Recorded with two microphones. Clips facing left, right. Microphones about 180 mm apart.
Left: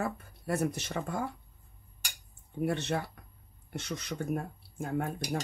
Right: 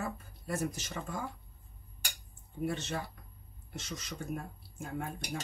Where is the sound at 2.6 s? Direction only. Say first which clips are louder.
Left 4 dB; 60° left (ahead or behind).